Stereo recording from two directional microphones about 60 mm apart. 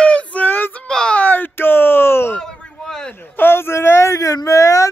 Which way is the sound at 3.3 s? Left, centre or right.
Left.